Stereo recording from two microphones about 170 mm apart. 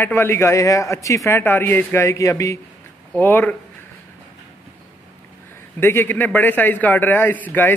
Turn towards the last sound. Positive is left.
turn(degrees=10)  # may be behind; listen again after turning